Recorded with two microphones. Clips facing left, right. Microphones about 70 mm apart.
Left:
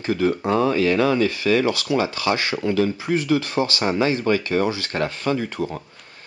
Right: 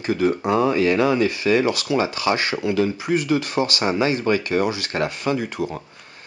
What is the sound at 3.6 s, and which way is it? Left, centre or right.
Speech, centre.